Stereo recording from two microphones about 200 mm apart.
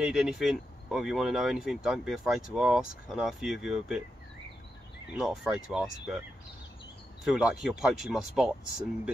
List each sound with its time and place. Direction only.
0.0 s speech: centre (ahead or behind)
5.2 s speech: centre (ahead or behind)
7.2 s speech: 5° right (ahead or behind)